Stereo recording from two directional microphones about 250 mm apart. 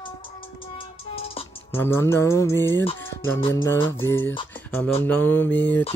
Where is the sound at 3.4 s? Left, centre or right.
Centre.